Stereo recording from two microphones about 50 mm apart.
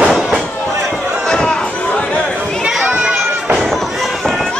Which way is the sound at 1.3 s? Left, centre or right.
Centre.